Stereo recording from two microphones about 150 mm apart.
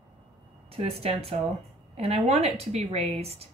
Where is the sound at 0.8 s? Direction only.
40° right (ahead or behind).